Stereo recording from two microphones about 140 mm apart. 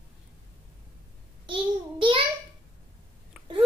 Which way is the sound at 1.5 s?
35° right (ahead or behind).